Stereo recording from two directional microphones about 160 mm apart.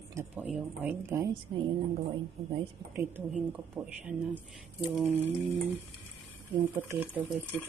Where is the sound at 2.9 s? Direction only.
15° right (ahead or behind).